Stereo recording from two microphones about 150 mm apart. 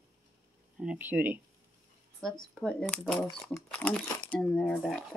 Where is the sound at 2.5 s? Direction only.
5° left (ahead or behind).